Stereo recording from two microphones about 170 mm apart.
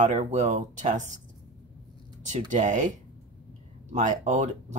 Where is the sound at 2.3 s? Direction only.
45° right (ahead or behind).